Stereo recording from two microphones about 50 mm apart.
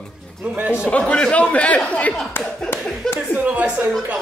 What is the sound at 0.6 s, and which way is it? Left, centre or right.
Speech, right.